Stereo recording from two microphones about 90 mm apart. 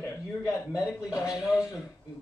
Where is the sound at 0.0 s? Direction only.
30° left (ahead or behind).